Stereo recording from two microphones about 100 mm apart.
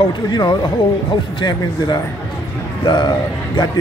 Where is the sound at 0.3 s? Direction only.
50° left (ahead or behind).